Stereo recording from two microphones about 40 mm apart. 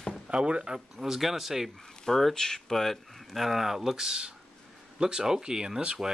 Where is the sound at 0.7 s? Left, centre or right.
Centre.